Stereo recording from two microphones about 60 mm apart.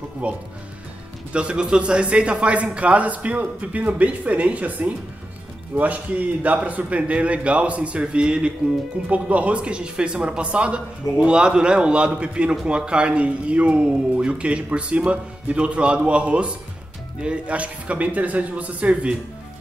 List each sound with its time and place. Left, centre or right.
0.2 s a man's voice: right